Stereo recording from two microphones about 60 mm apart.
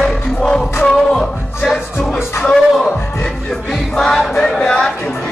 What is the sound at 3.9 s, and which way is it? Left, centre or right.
Music, centre.